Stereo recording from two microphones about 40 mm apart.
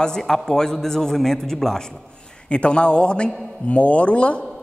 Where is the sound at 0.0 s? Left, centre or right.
Centre.